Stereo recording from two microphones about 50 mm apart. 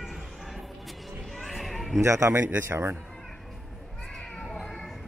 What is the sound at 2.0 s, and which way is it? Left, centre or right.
Speech, right.